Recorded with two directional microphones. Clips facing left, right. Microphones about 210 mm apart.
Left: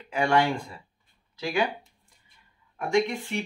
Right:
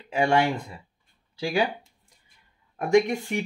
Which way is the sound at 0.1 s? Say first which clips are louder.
Right 1 dB; 25° right (ahead or behind).